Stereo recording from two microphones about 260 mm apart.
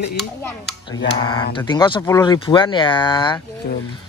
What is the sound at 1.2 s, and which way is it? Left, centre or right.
Speech, centre.